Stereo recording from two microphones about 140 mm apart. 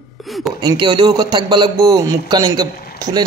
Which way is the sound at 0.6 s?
30° right (ahead or behind).